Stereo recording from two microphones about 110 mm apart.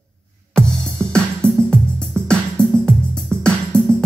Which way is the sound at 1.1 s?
10° left (ahead or behind).